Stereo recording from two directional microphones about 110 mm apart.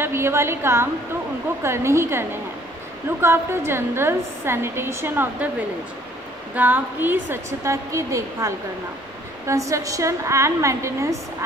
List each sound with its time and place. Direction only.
0.0 s a woman's voice: 25° right (ahead or behind)
6.5 s a woman's voice: 15° right (ahead or behind)